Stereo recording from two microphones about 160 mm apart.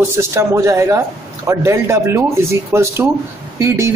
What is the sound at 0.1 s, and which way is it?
Speech, 15° right (ahead or behind).